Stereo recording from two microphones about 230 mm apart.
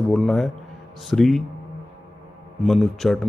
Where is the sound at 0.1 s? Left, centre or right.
Centre.